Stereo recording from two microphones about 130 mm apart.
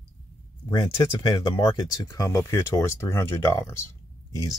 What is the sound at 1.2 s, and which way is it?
Speech, 35° left (ahead or behind).